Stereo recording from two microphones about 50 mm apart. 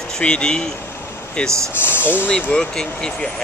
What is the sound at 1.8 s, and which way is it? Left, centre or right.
Speech, left.